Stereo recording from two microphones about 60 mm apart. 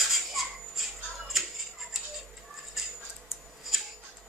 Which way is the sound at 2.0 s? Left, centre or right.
Centre.